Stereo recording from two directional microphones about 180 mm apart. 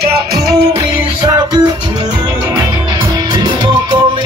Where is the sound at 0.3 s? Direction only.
20° right (ahead or behind).